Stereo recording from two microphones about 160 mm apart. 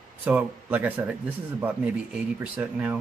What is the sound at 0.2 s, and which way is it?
Speech, 10° right (ahead or behind).